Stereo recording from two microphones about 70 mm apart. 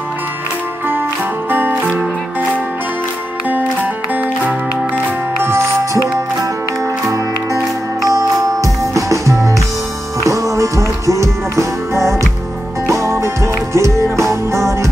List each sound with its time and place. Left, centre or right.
1.5 s music: right
4.1 s music: right
8.1 s music: right
13.2 s music: right